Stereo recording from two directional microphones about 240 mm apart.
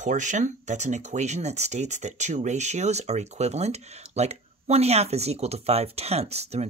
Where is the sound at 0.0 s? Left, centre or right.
Right.